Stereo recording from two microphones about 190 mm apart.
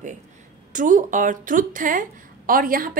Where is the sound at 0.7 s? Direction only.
40° right (ahead or behind).